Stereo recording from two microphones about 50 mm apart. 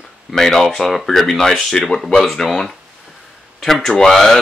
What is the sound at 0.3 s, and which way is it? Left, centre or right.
Speech, centre.